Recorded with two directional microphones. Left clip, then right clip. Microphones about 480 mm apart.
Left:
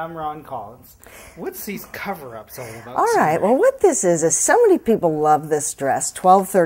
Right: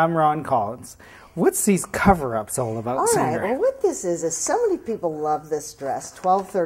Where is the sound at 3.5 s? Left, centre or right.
Left.